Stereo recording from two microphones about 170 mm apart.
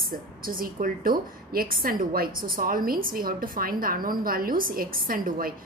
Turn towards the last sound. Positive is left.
turn(degrees=-55)  # may be behind; listen again after turning